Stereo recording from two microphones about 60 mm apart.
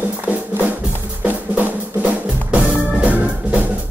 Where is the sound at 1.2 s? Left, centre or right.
Right.